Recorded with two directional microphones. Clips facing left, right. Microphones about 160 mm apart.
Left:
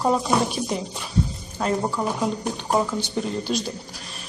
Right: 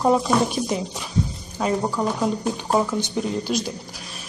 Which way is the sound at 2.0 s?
10° left (ahead or behind).